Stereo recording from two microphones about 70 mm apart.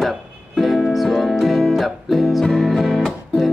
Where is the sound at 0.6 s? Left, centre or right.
Centre.